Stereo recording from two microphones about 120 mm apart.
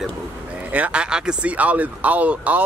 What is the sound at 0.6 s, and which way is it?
Speech, 10° right (ahead or behind).